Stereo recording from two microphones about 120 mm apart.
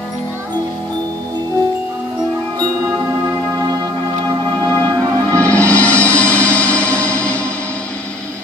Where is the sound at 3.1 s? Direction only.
30° right (ahead or behind).